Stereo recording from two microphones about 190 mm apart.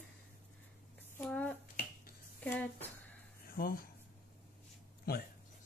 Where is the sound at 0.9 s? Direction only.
10° left (ahead or behind).